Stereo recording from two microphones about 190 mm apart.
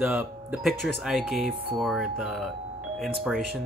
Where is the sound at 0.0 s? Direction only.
5° right (ahead or behind).